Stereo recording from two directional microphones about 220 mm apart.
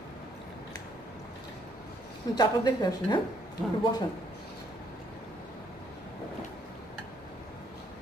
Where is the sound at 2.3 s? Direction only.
20° left (ahead or behind).